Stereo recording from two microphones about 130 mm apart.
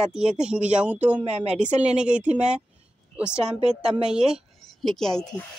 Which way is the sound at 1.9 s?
10° right (ahead or behind).